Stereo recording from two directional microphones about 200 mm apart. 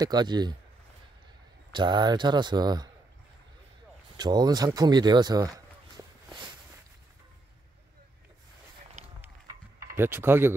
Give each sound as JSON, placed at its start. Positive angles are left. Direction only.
{"t": 0.0, "sound": "speech", "side_deg": -20}
{"t": 1.7, "sound": "speech", "side_deg": -20}
{"t": 4.2, "sound": "speech", "side_deg": -20}
{"t": 9.0, "sound": "run", "side_deg": -35}
{"t": 9.9, "sound": "speech", "side_deg": -10}